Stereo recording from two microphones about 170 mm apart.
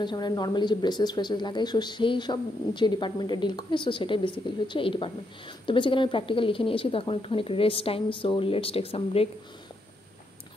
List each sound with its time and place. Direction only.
0.0 s speech: 25° left (ahead or behind)